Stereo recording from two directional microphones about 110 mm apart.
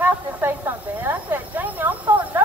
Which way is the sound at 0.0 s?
20° right (ahead or behind).